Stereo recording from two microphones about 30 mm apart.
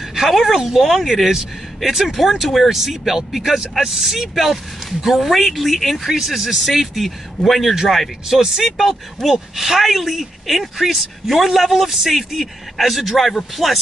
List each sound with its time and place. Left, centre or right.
0.1 s speech: centre
8.3 s speech: centre
9.3 s speech: centre